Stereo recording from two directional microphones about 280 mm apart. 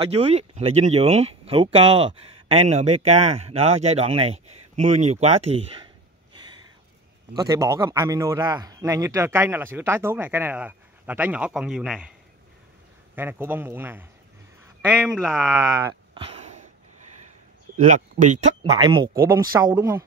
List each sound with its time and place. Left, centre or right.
0.0 s speech: right
7.3 s a man's voice: centre
13.1 s a man's voice: centre
15.6 s a sound: centre
17.8 s a man's voice: right; by 20.1 s centre